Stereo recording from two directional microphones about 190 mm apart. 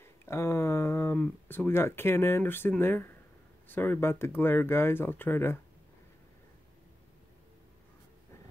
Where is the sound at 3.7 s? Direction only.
10° left (ahead or behind).